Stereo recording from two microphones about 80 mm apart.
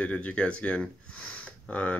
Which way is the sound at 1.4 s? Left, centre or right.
Centre.